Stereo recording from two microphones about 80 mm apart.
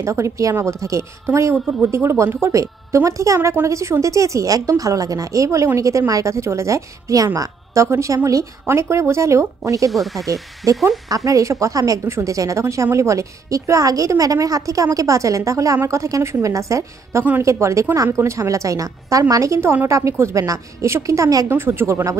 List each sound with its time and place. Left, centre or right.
0.0 s a woman's voice: right
9.8 s speech: centre
11.1 s a woman's voice: right
21.5 s a woman's voice: right